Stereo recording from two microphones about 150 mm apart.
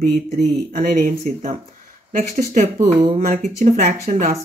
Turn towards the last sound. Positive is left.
turn(degrees=-60)  # may be behind; listen again after turning